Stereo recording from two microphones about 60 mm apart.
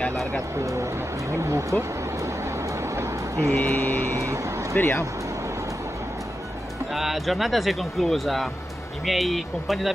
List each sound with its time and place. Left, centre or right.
0.6 s speech: right
3.0 s music: right
3.5 s a sound: left
4.1 s speech: right
4.7 s a sound: left
6.9 s speech: centre